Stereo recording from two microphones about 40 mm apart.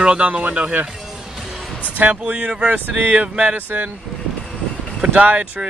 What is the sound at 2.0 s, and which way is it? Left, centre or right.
Speech, right.